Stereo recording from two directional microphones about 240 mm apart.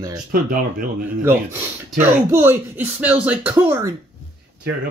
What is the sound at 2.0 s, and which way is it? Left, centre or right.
Speech, centre.